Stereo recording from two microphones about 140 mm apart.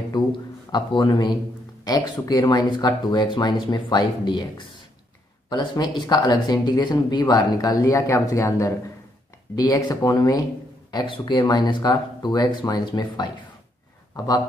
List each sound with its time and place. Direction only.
0.1 s a man's voice: 30° left (ahead or behind)